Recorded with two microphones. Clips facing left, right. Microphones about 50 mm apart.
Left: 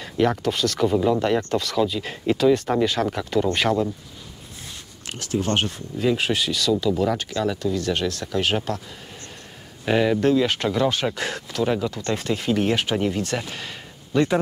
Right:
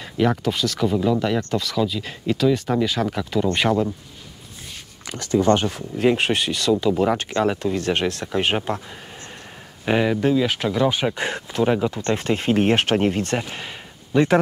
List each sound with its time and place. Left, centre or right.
0.0 s speech: centre
0.7 s speech: centre
6.0 s speech: right
7.2 s speech: right
9.8 s speech: centre
10.9 s speech: centre
12.1 s speech: right
13.4 s a sound: centre